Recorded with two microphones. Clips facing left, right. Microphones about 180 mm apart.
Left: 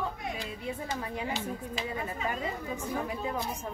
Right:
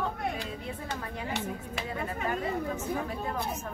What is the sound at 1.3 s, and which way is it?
Speech, 60° right (ahead or behind).